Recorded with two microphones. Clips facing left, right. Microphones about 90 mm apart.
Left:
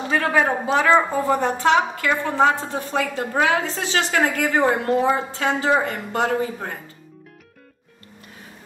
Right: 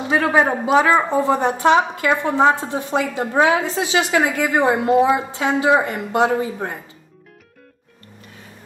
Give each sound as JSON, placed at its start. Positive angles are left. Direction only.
{"t": 0.1, "sound": "a woman's voice", "side_deg": -15}